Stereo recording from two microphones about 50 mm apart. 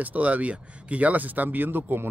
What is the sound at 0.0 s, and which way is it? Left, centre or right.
Speech, right.